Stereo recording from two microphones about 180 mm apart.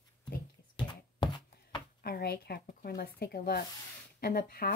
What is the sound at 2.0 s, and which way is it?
Speech, 60° left (ahead or behind).